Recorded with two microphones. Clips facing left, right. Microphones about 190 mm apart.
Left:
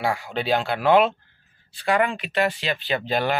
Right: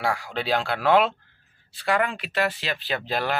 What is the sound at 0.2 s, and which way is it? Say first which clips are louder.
Speech: left 2 dB; centre (ahead or behind).